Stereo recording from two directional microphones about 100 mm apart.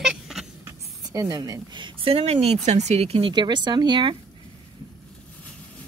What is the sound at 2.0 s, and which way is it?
Speech, 90° right.